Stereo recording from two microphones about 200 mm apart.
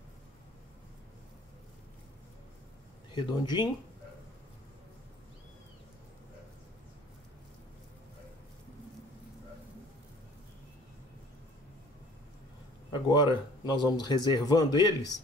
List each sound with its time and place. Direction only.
3.1 s speech: 20° left (ahead or behind)
12.9 s speech: 20° left (ahead or behind)